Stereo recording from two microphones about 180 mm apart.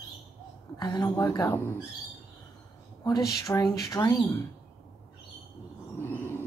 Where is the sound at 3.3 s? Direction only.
20° left (ahead or behind).